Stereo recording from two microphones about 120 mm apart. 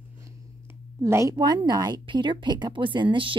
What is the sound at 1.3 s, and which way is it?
Speech, 40° right (ahead or behind).